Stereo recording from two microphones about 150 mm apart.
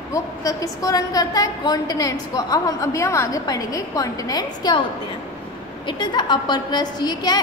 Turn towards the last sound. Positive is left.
turn(degrees=25)  # may be behind; listen again after turning